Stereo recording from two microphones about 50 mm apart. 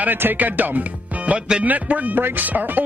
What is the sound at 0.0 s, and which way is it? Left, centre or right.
Speech, right.